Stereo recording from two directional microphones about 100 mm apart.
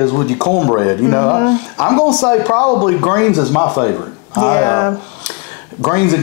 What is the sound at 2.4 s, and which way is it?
Speech, 25° left (ahead or behind).